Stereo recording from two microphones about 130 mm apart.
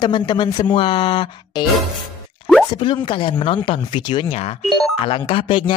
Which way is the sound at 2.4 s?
45° left (ahead or behind).